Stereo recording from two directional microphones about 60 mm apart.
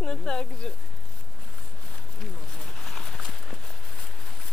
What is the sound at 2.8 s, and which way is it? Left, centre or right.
Horse, centre.